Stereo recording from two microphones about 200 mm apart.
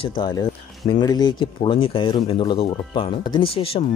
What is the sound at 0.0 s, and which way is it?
Speech, 20° left (ahead or behind).